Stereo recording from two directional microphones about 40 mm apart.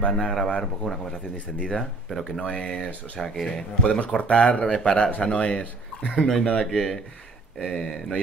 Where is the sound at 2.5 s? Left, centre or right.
Left.